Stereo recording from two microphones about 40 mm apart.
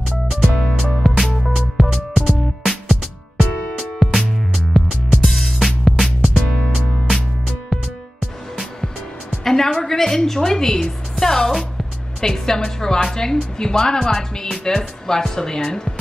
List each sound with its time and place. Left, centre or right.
0.3 s music: centre
3.7 s music: centre
4.7 s music: centre
5.3 s music: centre
9.4 s music: centre
9.8 s a woman's voice: centre